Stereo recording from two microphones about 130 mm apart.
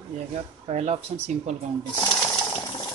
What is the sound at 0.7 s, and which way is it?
Speech, 55° right (ahead or behind).